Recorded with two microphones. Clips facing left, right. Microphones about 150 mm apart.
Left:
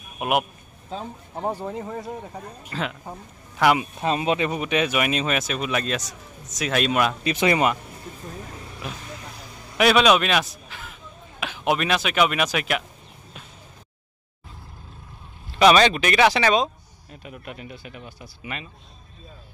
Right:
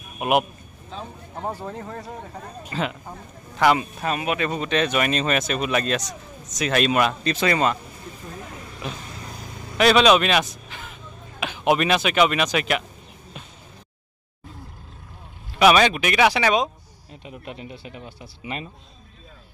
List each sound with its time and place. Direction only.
0.2 s speech: centre (ahead or behind)
1.4 s speech: 15° left (ahead or behind)
2.7 s speech: centre (ahead or behind)
4.0 s speech: 25° left (ahead or behind)
4.5 s speech: 10° left (ahead or behind)
7.3 s speech: 15° left (ahead or behind)
8.8 s a man's voice: 5° left (ahead or behind)
15.6 s speech: 5° right (ahead or behind)
17.1 s speech: 25° right (ahead or behind)